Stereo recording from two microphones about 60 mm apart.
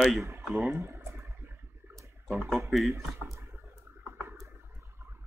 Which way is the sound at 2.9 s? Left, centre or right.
Right.